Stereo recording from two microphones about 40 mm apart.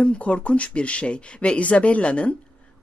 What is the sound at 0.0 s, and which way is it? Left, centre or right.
A woman's voice, left.